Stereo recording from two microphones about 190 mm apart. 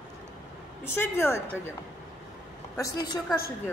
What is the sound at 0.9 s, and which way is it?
Speech, 15° left (ahead or behind).